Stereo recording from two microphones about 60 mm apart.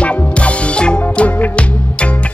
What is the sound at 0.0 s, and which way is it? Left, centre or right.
Music, left.